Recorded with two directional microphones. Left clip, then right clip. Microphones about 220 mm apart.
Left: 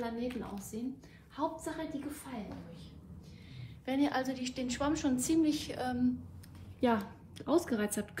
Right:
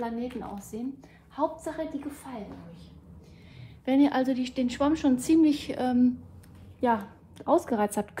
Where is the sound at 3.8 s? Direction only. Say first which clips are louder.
Right 8 dB; 45° right (ahead or behind).